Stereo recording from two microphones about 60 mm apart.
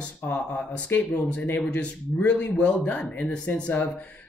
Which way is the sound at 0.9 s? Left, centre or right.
Left.